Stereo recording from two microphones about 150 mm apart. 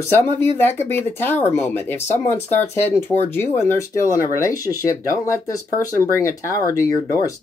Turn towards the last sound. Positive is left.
turn(degrees=20)  # may be behind; listen again after turning